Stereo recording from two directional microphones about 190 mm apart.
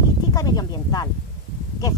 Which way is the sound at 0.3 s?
20° left (ahead or behind).